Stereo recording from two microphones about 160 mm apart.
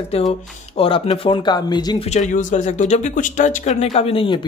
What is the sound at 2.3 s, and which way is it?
Speech, 50° left (ahead or behind).